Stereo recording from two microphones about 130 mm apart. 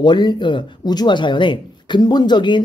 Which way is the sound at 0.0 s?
35° left (ahead or behind).